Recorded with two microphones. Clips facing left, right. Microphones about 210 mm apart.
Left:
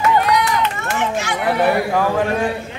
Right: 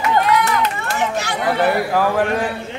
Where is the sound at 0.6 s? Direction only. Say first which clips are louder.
Even; 35° right (ahead or behind).